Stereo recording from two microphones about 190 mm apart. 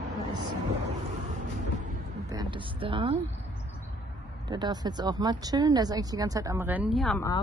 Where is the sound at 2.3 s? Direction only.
25° right (ahead or behind).